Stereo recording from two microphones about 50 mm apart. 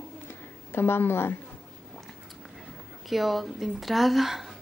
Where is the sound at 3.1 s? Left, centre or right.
Centre.